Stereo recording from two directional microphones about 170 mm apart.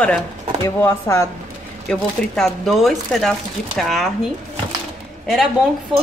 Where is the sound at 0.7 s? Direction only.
15° left (ahead or behind).